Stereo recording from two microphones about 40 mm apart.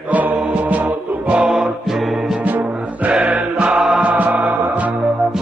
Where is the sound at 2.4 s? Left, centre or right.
Right.